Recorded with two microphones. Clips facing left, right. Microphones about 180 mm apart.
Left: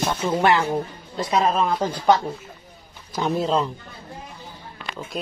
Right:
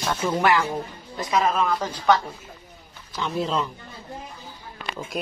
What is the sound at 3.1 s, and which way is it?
Speech, 40° left (ahead or behind).